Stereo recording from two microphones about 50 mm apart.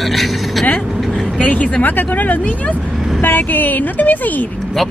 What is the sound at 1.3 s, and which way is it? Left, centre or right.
Speech, left.